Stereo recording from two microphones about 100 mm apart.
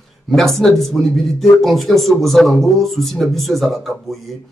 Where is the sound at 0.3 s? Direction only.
5° left (ahead or behind).